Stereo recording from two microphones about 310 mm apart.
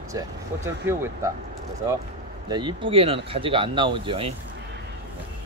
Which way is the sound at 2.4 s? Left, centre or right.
Centre.